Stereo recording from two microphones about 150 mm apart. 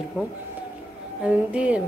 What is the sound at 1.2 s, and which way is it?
Speech, 10° right (ahead or behind).